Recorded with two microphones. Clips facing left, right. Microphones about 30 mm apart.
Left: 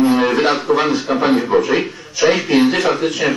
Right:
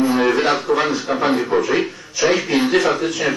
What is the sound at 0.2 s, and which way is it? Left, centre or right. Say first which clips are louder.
A man's voice: left 1 dB; centre.